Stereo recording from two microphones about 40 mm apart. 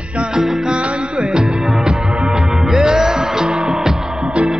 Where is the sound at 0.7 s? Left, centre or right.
Right.